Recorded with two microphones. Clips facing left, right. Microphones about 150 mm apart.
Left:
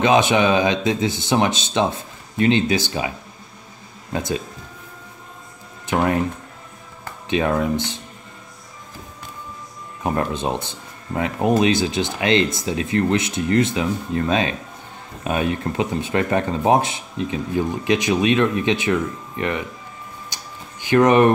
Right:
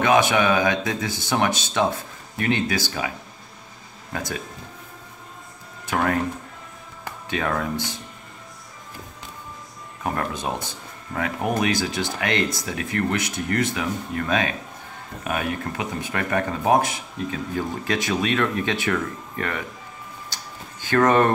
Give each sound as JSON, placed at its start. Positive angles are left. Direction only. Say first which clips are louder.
{"t": 0.0, "sound": "speech", "louder": "left 2 dB", "side_deg": 20}
{"t": 4.1, "sound": "speech", "louder": "left 6 dB", "side_deg": 25}
{"t": 5.9, "sound": "speech", "louder": "left 3 dB", "side_deg": 20}
{"t": 7.2, "sound": "speech", "louder": "left 6 dB", "side_deg": 20}
{"t": 10.0, "sound": "speech", "louder": "left 4 dB", "side_deg": 25}
{"t": 20.8, "sound": "speech", "louder": "left 4 dB", "side_deg": 15}